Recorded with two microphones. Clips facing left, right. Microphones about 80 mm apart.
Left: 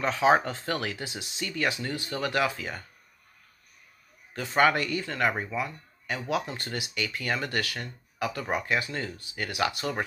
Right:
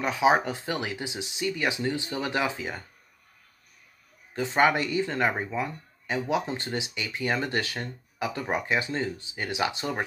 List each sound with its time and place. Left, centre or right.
0.0 s speech: centre
4.3 s speech: right